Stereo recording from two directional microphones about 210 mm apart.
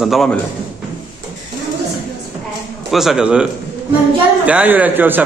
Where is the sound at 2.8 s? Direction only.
Centre (ahead or behind).